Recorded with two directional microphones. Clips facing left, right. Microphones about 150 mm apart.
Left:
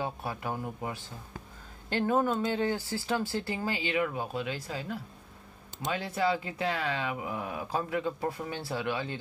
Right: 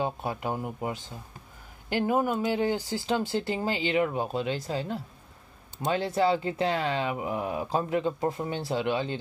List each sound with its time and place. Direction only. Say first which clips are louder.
0.0 s speech: right 4 dB; 20° right (ahead or behind)